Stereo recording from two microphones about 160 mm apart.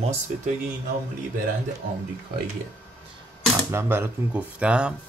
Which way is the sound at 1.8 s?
60° right (ahead or behind).